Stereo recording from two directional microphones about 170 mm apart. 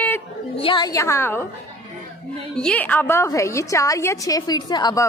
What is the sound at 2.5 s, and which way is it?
A woman's voice, 5° left (ahead or behind).